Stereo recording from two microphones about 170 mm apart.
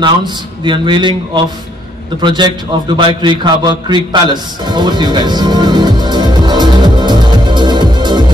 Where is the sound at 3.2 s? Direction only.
25° right (ahead or behind).